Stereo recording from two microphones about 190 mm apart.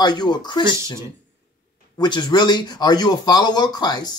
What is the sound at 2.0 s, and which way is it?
Speech, 20° left (ahead or behind).